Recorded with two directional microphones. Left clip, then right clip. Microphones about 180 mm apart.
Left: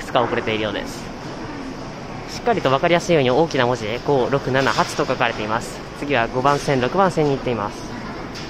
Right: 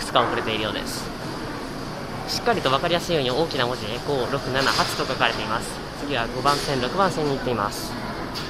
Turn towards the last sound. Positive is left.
turn(degrees=30)  # may be behind; listen again after turning